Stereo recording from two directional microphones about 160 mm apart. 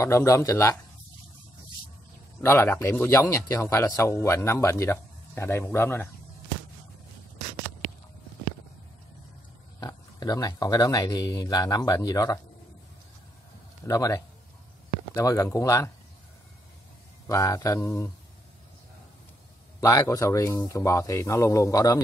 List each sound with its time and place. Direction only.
0.0 s speech: 20° left (ahead or behind)
2.4 s speech: 15° left (ahead or behind)
9.8 s speech: 25° left (ahead or behind)
13.8 s speech: 20° left (ahead or behind)
17.3 s speech: 20° left (ahead or behind)
19.8 s speech: 20° left (ahead or behind)